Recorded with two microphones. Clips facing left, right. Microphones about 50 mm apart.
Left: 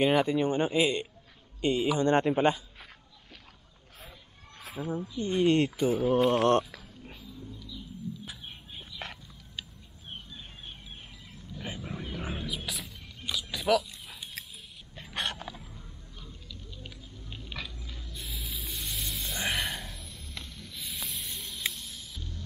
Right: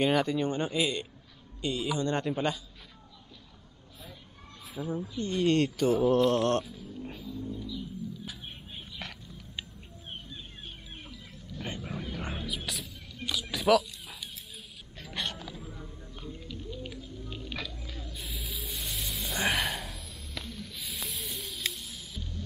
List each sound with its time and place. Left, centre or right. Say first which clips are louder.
0.0 s a man's voice: left 2 dB; centre
4.8 s speech: even; centre
5.1 s speech: left 2 dB; centre
7.1 s music: right 6 dB; centre
9.0 s a sound: left 2 dB; left
11.5 s wild animals: right 1 dB; centre
13.3 s a sound: right 2 dB; centre
15.1 s a sound: left 2 dB; left
16.7 s music: right 6 dB; centre